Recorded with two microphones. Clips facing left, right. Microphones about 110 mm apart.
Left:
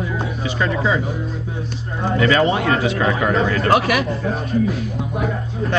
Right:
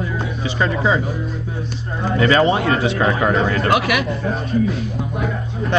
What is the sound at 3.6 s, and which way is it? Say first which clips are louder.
Speech: left 1 dB; 35° left (ahead or behind).